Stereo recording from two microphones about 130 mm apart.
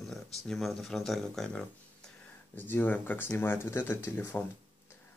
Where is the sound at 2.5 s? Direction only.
15° left (ahead or behind).